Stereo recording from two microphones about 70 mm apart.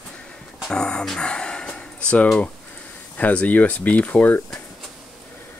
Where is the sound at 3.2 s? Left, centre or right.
Left.